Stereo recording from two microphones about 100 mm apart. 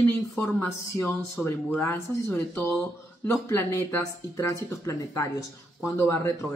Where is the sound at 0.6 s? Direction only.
30° left (ahead or behind).